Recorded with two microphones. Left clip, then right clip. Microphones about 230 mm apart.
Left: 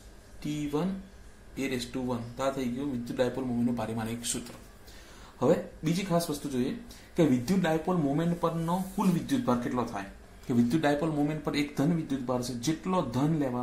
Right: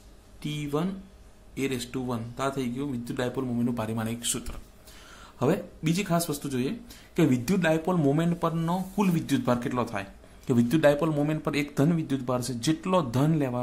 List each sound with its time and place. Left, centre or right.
0.4 s speech: right
5.4 s speech: right